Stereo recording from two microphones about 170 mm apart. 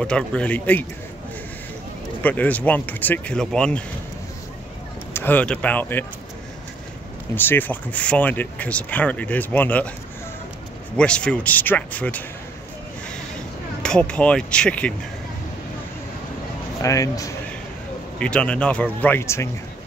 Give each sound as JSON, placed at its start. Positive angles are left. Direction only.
{"t": 0.0, "sound": "speech", "side_deg": 5}
{"t": 2.2, "sound": "speech", "side_deg": 10}
{"t": 5.1, "sound": "speech", "side_deg": 10}
{"t": 7.3, "sound": "speech", "side_deg": 10}
{"t": 11.0, "sound": "speech", "side_deg": 5}
{"t": 13.8, "sound": "speech", "side_deg": 5}
{"t": 16.8, "sound": "a man's voice", "side_deg": 20}
{"t": 18.2, "sound": "speech", "side_deg": 5}